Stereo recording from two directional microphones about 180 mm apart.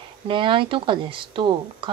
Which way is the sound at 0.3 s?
30° right (ahead or behind).